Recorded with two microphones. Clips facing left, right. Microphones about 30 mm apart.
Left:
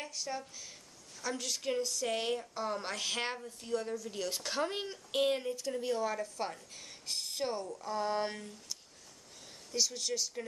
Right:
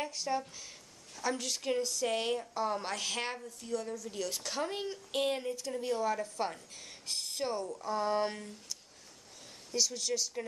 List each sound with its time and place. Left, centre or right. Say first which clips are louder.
0.0 s a woman's voice: right 5 dB; centre
7.6 s speech: right 2 dB; centre
9.8 s a woman's voice: right 1 dB; centre